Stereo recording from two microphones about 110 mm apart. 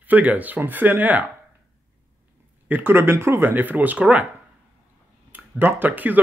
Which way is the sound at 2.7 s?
20° right (ahead or behind).